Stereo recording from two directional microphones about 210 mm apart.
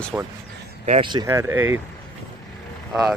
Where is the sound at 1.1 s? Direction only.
15° right (ahead or behind).